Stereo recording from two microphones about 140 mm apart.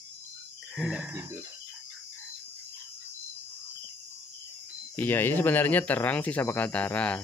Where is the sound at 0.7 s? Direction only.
5° right (ahead or behind).